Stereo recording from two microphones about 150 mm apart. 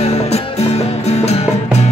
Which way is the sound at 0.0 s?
45° left (ahead or behind).